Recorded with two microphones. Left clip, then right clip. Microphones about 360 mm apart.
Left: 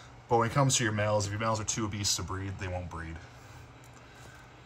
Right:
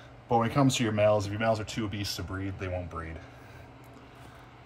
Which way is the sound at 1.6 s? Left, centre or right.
Centre.